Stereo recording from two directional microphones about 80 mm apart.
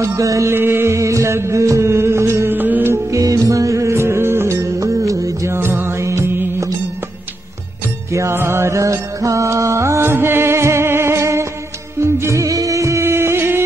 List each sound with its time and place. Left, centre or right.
0.0 s music: right
3.1 s music: right
8.1 s music: right